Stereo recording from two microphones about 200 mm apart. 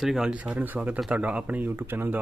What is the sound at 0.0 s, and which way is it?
Speech, 5° right (ahead or behind).